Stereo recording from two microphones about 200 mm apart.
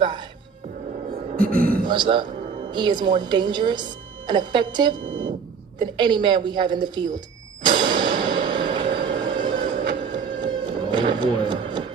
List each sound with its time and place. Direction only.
1.3 s a man's voice: 45° right (ahead or behind)
1.9 s a woman's voice: 25° right (ahead or behind)
7.6 s a sound: 25° right (ahead or behind)
9.9 s music: 25° right (ahead or behind)